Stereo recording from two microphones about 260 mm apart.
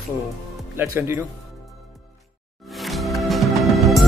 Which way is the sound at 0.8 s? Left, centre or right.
Centre.